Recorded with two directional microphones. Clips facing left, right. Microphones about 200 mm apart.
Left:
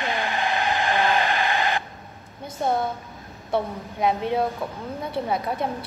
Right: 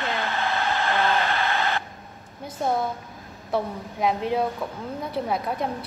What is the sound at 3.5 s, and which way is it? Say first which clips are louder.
A woman's voice: left 1 dB; centre (ahead or behind).